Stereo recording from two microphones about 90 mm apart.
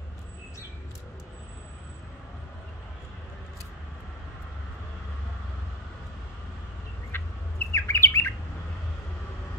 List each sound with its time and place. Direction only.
7.1 s squawk: 25° left (ahead or behind)